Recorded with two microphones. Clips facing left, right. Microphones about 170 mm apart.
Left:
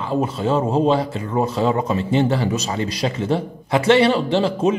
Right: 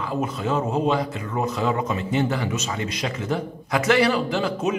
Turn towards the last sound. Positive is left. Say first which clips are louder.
# left 5 dB
turn(degrees=30)  # may be behind; listen again after turning